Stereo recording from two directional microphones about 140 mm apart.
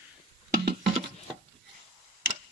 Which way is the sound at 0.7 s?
35° right (ahead or behind).